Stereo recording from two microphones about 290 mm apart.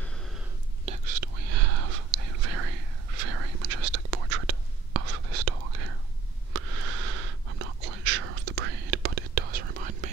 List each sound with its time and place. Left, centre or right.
0.8 s whispering: right
6.5 s whispering: right